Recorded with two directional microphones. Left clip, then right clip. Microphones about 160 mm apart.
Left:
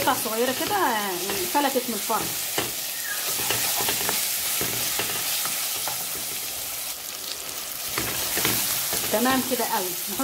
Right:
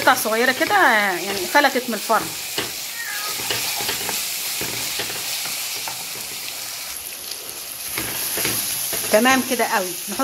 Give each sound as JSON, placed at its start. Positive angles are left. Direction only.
{"t": 0.0, "sound": "frying", "side_deg": -20}
{"t": 9.2, "sound": "frying", "side_deg": -25}